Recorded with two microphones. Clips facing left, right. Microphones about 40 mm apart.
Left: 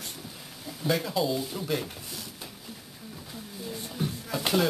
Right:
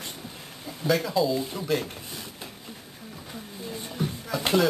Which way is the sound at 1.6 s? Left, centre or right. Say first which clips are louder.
Right 3 dB; centre.